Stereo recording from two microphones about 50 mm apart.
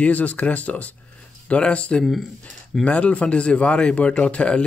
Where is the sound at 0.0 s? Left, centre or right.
Left.